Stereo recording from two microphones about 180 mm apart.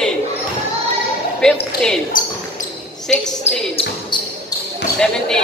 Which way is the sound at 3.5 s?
35° left (ahead or behind).